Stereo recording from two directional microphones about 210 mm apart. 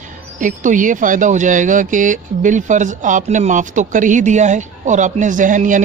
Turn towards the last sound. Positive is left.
turn(degrees=-35)  # may be behind; listen again after turning